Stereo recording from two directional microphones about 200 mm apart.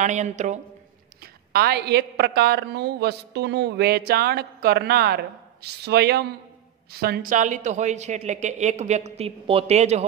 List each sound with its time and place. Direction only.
0.0 s speech: 35° right (ahead or behind)
1.2 s a woman's voice: 50° right (ahead or behind); by 10.0 s 35° right (ahead or behind)